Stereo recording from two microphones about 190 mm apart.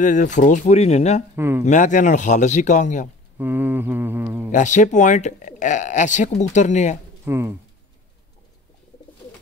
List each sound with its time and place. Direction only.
0.0 s speech: 40° left (ahead or behind)
1.3 s a man's voice: 10° right (ahead or behind)
1.6 s speech: 40° left (ahead or behind)
3.3 s mantra: 10° right (ahead or behind)
4.5 s speech: 40° left (ahead or behind)
7.2 s mantra: 15° right (ahead or behind)